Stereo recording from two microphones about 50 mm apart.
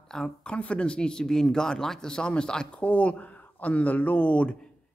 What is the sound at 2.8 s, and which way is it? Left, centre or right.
Speech, left.